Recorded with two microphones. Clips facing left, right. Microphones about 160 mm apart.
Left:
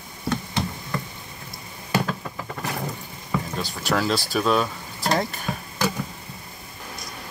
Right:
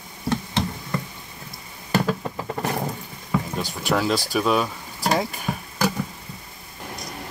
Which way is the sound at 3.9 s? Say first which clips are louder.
Right 1 dB; centre (ahead or behind).